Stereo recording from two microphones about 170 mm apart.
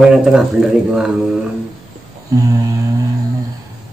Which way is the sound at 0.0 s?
5° right (ahead or behind).